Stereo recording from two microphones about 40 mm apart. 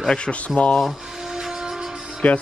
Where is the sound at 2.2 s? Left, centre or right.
Left.